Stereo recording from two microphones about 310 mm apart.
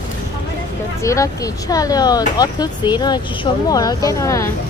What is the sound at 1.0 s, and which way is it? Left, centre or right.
Speech, centre.